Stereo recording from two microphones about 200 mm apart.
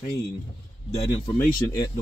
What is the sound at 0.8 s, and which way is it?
Speech, 30° left (ahead or behind).